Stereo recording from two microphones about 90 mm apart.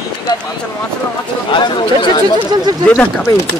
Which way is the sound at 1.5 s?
60° left (ahead or behind).